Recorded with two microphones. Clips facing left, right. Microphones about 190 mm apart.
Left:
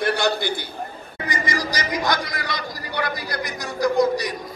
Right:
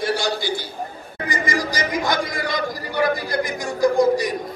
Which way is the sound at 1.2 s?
50° right (ahead or behind).